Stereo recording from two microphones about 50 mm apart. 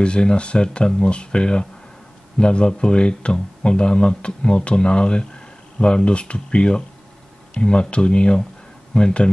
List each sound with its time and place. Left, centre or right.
0.0 s speech: centre